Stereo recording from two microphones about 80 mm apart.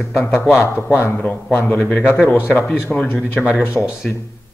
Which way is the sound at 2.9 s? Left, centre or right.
Centre.